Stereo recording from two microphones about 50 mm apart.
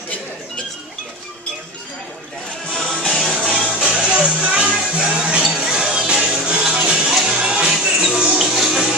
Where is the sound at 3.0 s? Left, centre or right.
Centre.